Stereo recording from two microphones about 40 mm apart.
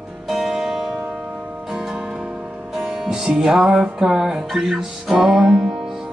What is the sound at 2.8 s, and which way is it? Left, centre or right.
Music, centre.